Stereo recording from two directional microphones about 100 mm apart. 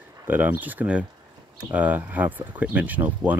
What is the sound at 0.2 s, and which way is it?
Speech, 20° right (ahead or behind).